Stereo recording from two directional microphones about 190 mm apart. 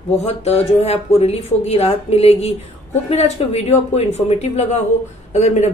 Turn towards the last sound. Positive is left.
turn(degrees=35)  # may be behind; listen again after turning